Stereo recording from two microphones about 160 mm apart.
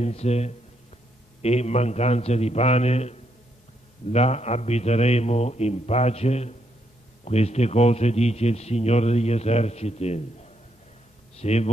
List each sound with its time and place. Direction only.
0.0 s a man's voice: 40° left (ahead or behind)